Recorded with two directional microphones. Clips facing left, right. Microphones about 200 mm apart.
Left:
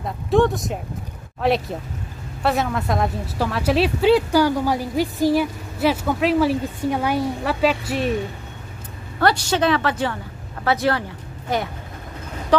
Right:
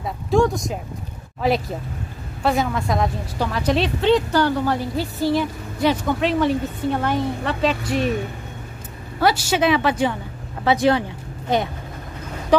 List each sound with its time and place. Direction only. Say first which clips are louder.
0.0 s a woman's voice: left 1 dB; centre (ahead or behind)
9.2 s a woman's voice: even; 5° right (ahead or behind)